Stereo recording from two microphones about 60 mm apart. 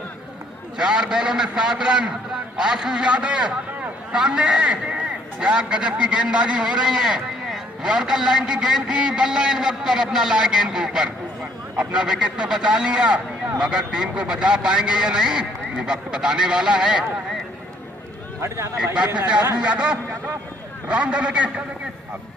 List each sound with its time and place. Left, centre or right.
0.7 s a man's voice: centre
19.0 s a man's voice: centre